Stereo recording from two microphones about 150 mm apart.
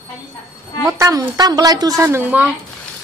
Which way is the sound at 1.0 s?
25° right (ahead or behind).